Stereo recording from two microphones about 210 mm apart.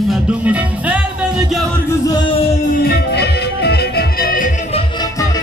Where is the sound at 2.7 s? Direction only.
50° left (ahead or behind).